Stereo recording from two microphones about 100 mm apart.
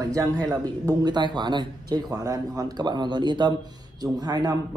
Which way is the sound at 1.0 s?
50° right (ahead or behind).